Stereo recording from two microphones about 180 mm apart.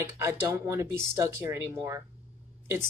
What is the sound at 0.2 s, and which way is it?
Speech, 15° right (ahead or behind).